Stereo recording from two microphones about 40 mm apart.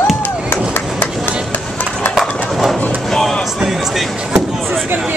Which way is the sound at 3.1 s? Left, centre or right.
Centre.